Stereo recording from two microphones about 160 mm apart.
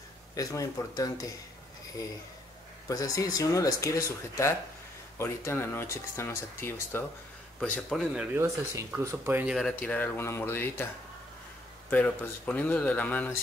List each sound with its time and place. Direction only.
0.3 s speech: 20° left (ahead or behind)
2.9 s a man's voice: 20° left (ahead or behind); by 8.3 s centre (ahead or behind)
8.4 s speech: 15° right (ahead or behind)
9.6 s speech: 5° left (ahead or behind)
11.9 s speech: 10° left (ahead or behind)